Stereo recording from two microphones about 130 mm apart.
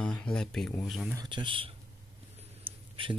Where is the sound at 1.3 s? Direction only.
40° right (ahead or behind).